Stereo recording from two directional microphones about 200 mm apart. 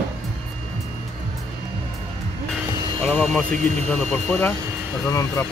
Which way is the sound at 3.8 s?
5° left (ahead or behind).